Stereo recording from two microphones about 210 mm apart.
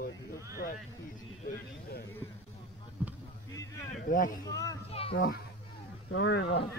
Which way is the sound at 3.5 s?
15° left (ahead or behind).